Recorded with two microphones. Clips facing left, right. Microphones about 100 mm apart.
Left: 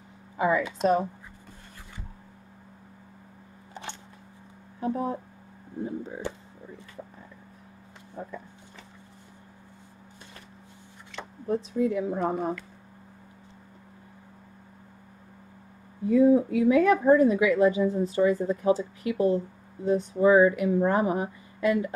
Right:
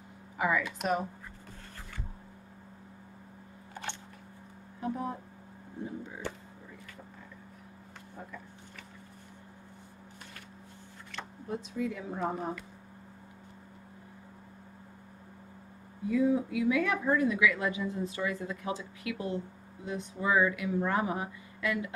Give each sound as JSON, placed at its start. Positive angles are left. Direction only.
{"t": 0.4, "sound": "speech", "side_deg": 30}
{"t": 4.7, "sound": "speech", "side_deg": 30}
{"t": 11.4, "sound": "a woman's voice", "side_deg": 40}
{"t": 16.1, "sound": "a woman's voice", "side_deg": 35}